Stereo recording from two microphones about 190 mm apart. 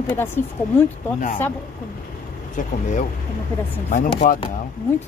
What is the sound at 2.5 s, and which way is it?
Speech, 40° left (ahead or behind).